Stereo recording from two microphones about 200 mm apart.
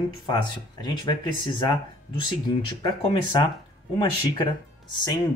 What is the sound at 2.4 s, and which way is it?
Speech, 20° left (ahead or behind).